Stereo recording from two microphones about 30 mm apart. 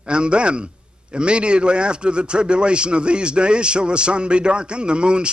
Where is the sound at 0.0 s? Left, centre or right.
Right.